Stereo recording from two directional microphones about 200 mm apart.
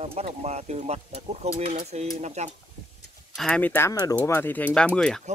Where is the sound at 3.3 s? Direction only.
5° left (ahead or behind).